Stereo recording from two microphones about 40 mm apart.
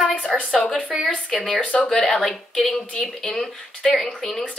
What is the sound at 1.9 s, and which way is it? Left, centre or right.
A woman's voice, centre.